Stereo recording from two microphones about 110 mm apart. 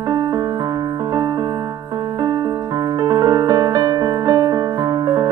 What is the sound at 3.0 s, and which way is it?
Music, 40° right (ahead or behind).